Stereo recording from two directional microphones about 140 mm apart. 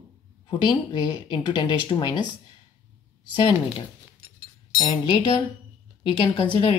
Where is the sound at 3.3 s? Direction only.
35° left (ahead or behind).